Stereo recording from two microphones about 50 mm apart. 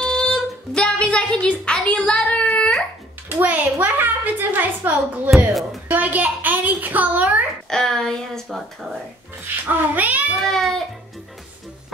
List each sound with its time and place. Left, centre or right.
0.0 s music: centre
3.3 s a woman's voice: right
5.5 s speech: centre
5.9 s a child's voice: right
7.7 s speech: centre
9.7 s a woman's voice: right
10.4 s speech: centre